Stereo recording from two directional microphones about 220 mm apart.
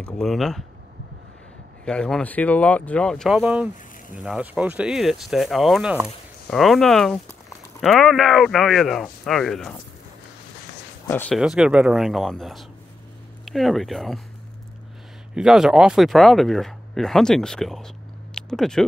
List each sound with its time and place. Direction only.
0.0 s speech: centre (ahead or behind)
1.9 s speech: 5° left (ahead or behind)
11.1 s speech: 10° left (ahead or behind)
11.3 s speech: centre (ahead or behind)
15.3 s speech: centre (ahead or behind)